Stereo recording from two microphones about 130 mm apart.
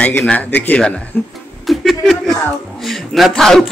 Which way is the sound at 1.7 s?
Centre (ahead or behind).